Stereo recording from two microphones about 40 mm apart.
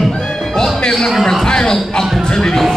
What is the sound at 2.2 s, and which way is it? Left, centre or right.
Music, centre.